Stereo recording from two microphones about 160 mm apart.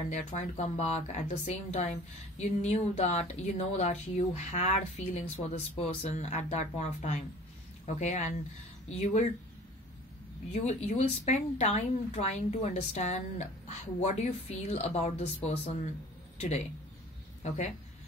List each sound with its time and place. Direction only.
0.1 s speech: 45° left (ahead or behind)
10.5 s speech: 40° left (ahead or behind)